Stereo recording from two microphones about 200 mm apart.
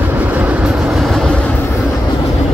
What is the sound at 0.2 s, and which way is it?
Train, 10° right (ahead or behind).